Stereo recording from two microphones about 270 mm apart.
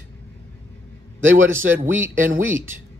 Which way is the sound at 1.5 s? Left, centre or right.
Centre.